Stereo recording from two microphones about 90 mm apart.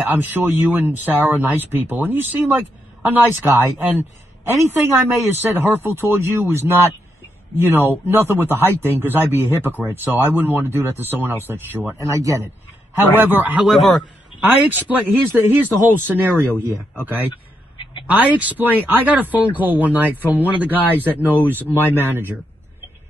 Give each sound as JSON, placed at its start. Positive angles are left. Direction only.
{"t": 0.0, "sound": "speech", "side_deg": -20}
{"t": 12.1, "sound": "a man's voice", "side_deg": -40}
{"t": 12.9, "sound": "speech", "side_deg": -20}
{"t": 13.7, "sound": "a man's voice", "side_deg": 0}
{"t": 14.4, "sound": "speech", "side_deg": -20}
{"t": 17.3, "sound": "a sound", "side_deg": 65}
{"t": 18.0, "sound": "speech", "side_deg": -15}